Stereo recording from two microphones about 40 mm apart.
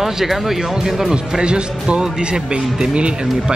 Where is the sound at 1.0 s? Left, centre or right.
Centre.